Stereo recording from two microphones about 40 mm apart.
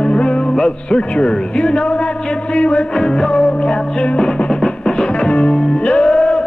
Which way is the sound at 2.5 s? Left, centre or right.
Left.